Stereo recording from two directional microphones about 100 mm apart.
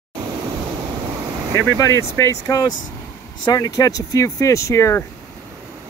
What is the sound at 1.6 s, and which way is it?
Speech, 30° left (ahead or behind).